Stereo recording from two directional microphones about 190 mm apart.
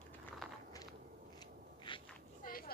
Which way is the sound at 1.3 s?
25° left (ahead or behind).